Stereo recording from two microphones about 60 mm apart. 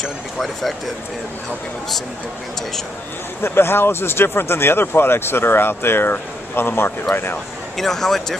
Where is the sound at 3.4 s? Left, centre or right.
Left.